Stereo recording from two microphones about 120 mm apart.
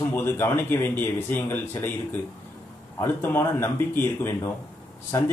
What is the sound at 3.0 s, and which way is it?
A man's voice, 20° left (ahead or behind).